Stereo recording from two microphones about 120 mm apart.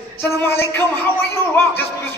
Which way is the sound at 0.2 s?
20° left (ahead or behind).